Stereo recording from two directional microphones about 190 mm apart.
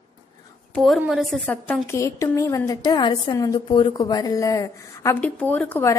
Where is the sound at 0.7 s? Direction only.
Centre (ahead or behind).